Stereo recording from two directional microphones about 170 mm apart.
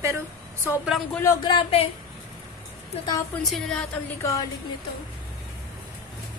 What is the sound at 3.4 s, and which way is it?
Speech, centre (ahead or behind).